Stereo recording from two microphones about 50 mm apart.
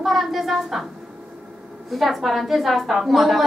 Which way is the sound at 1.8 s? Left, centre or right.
Centre.